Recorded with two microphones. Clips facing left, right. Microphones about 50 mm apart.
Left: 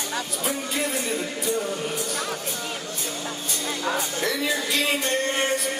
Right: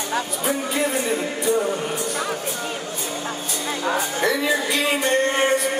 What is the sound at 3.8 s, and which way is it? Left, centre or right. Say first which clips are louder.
Music: right 5 dB; centre.